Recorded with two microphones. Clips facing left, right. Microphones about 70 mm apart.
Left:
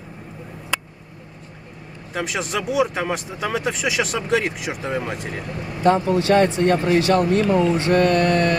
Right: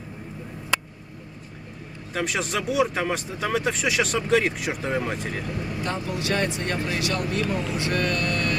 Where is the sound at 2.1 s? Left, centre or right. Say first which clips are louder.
Left 2 dB; centre.